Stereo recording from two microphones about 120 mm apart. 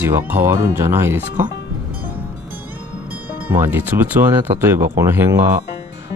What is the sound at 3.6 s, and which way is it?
Speech, 15° right (ahead or behind).